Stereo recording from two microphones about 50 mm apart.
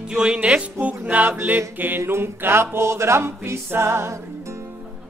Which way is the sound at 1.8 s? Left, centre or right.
Right.